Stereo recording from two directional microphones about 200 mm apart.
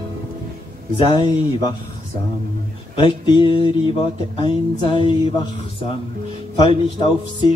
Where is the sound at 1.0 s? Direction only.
20° left (ahead or behind).